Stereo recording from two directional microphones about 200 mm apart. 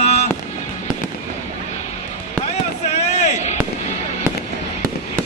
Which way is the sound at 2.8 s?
35° left (ahead or behind).